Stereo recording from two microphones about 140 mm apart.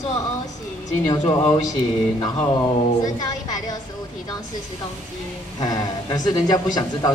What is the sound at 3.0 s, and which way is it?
Speech, 25° left (ahead or behind).